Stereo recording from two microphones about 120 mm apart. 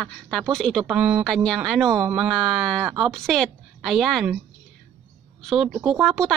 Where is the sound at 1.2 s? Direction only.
5° left (ahead or behind).